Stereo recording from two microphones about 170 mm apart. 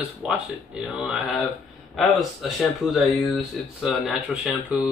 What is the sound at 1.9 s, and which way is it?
Speech, centre (ahead or behind).